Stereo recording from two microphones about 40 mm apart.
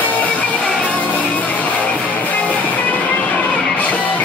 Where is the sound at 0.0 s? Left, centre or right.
Left.